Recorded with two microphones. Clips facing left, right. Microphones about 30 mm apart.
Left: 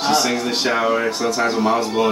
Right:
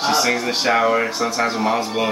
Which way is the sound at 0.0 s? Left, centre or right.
Centre.